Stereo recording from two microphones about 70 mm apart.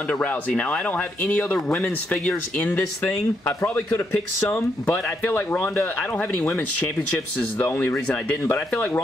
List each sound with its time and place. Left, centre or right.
0.1 s a man's voice: centre